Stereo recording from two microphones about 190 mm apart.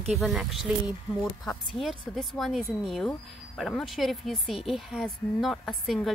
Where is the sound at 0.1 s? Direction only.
Centre (ahead or behind).